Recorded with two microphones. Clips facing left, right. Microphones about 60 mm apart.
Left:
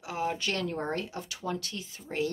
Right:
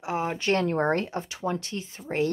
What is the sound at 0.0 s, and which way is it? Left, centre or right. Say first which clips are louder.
Speech: right 4 dB; right.